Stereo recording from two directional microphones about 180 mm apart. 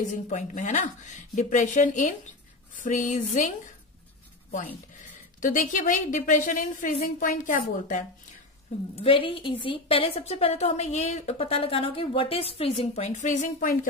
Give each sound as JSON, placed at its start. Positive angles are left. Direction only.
{"t": 0.1, "sound": "a woman's voice", "side_deg": 45}
{"t": 5.1, "sound": "a woman's voice", "side_deg": 45}
{"t": 9.0, "sound": "a woman's voice", "side_deg": 30}